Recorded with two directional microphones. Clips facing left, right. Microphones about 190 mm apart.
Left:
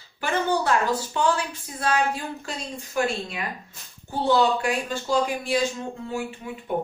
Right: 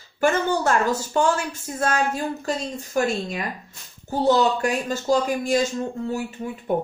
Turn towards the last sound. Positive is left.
turn(degrees=-40)  # may be behind; listen again after turning